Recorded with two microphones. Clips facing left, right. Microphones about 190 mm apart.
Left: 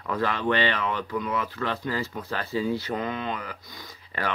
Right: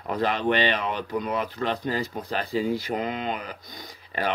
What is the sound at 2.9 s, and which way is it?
Speech, 25° right (ahead or behind).